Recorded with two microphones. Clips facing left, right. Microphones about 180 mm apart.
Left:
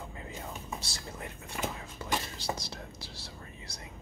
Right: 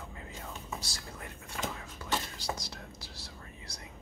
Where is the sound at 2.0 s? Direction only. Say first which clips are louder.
Left 1 dB; 25° left (ahead or behind).